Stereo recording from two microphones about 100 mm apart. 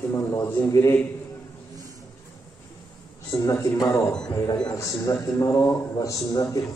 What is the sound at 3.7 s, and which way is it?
A man's voice, 40° left (ahead or behind).